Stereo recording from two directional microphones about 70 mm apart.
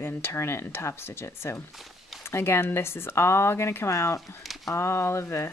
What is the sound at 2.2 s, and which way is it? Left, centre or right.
Speech, left.